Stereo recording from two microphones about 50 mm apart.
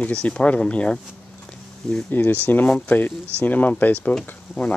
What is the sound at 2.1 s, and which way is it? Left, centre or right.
Speech, left.